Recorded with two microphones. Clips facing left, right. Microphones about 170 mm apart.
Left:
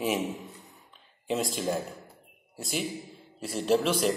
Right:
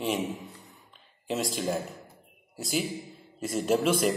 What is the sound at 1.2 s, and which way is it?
A man's voice, centre (ahead or behind).